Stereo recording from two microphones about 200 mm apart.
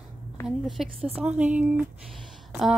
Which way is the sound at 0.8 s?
Centre (ahead or behind).